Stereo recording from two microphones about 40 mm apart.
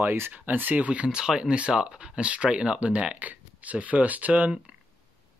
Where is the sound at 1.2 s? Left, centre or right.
Centre.